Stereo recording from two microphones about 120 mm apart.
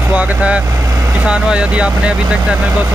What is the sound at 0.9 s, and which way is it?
Vehicle, 25° right (ahead or behind).